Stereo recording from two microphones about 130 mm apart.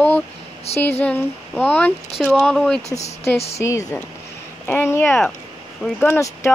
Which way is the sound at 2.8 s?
60° left (ahead or behind).